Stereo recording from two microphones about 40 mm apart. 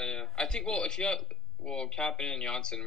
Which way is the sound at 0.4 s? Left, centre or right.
Centre.